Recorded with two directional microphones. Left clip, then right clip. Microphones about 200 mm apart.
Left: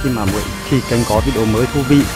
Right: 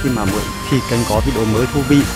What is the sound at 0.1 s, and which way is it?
Speech, centre (ahead or behind).